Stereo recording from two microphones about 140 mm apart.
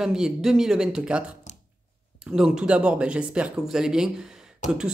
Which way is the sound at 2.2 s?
5° right (ahead or behind).